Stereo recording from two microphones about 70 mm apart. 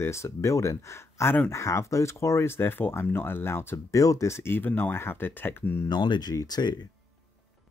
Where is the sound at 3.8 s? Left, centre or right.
Left.